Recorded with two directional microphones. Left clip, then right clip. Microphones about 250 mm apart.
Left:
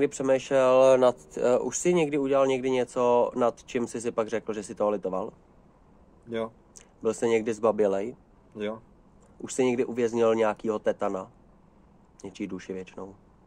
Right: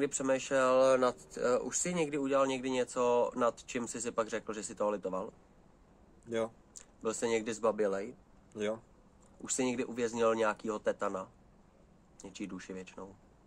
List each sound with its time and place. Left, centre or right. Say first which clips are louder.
0.0 s speech: left 8 dB; left
6.2 s speech: left 3 dB; centre
6.7 s speech: left 8 dB; left
9.4 s speech: left 9 dB; left